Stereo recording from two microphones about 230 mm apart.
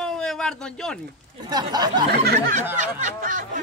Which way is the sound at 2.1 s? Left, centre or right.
Right.